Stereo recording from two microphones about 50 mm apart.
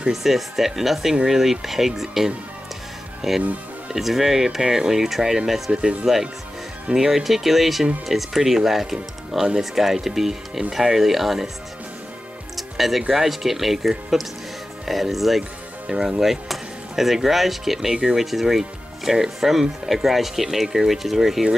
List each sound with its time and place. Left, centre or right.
0.1 s speech: centre
5.7 s speech: centre
12.5 s music: centre
13.1 s speech: centre